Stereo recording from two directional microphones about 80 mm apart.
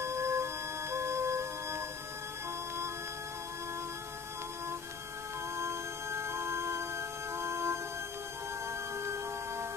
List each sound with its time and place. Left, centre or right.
0.0 s music: right
5.6 s music: right
9.0 s music: right